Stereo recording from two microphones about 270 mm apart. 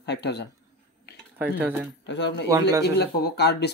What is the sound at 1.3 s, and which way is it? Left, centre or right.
Speech, centre.